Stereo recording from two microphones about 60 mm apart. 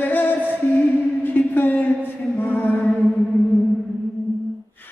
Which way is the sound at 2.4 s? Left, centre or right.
Left.